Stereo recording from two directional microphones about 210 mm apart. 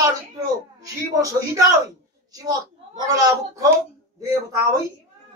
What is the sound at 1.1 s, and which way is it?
A man's voice, 15° right (ahead or behind).